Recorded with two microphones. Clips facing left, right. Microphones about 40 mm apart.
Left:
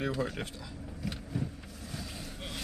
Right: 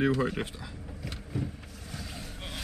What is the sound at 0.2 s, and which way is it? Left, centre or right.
Speech, centre.